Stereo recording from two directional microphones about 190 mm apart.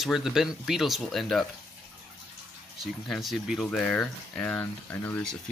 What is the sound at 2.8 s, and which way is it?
Speech, centre (ahead or behind).